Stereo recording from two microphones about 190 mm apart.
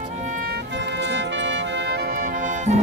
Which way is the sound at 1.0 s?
70° right (ahead or behind).